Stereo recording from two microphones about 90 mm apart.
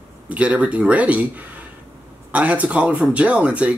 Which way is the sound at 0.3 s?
15° right (ahead or behind).